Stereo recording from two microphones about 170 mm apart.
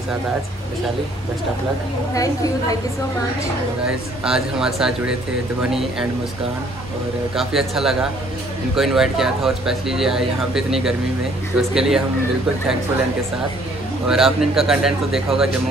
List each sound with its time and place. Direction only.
2.1 s a woman's voice: 20° left (ahead or behind)
3.8 s speech: 5° right (ahead or behind)
7.3 s speech: centre (ahead or behind)
14.0 s speech: centre (ahead or behind)